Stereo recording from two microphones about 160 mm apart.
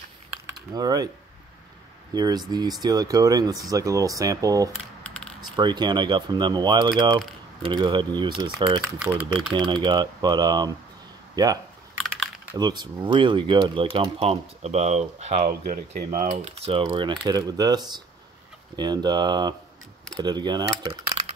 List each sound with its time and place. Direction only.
0.6 s speech: 25° right (ahead or behind)
2.1 s speech: 25° right (ahead or behind)
5.0 s typing: 5° left (ahead or behind)
5.6 s speech: 25° right (ahead or behind)
9.0 s speech: 5° right (ahead or behind)
9.5 s speech: 30° right (ahead or behind)